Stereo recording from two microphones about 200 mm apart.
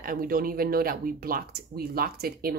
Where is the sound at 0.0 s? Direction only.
45° right (ahead or behind).